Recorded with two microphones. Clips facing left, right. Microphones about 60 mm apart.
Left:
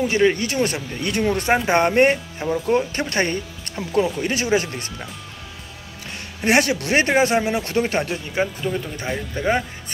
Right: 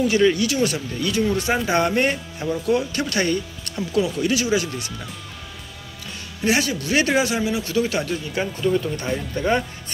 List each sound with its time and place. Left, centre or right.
0.0 s speech: left
0.7 s speech: left
6.4 s speech: left
7.0 s speech: left
8.9 s speech: centre